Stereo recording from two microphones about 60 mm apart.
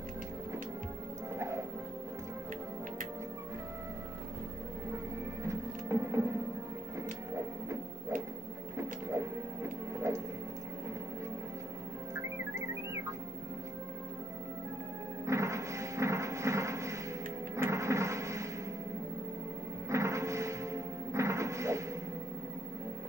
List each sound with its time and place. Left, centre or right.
1.3 s music: right
5.4 s music: right
8.7 s printer: right
12.2 s music: right
15.2 s music: right
17.6 s a sound: right
19.9 s music: right